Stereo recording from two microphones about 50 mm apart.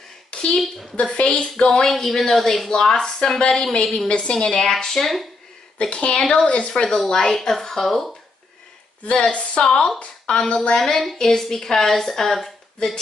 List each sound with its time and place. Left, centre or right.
0.3 s a sound: centre
0.9 s a woman's voice: left; by 5.3 s centre
5.8 s a woman's voice: left; by 8.1 s centre
9.0 s a woman's voice: left
10.8 s a woman's voice: centre